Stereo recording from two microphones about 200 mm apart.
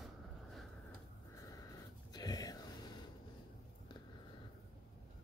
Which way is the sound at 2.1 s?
20° left (ahead or behind).